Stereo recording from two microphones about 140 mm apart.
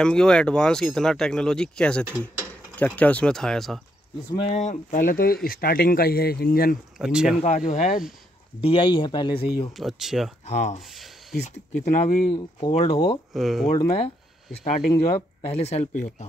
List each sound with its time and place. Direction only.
0.0 s speech: 5° left (ahead or behind)
2.0 s mechanisms: 15° right (ahead or behind)
2.8 s speech: 10° left (ahead or behind)
4.5 s speech: 60° left (ahead or behind); by 6.8 s 90° left
7.0 s speech: 5° right (ahead or behind)
7.4 s speech: 65° left (ahead or behind)
8.5 s speech: 35° left (ahead or behind)
9.8 s speech: centre (ahead or behind)
10.4 s speech: 55° left (ahead or behind)
13.3 s speech: centre (ahead or behind)
13.9 s speech: 45° left (ahead or behind)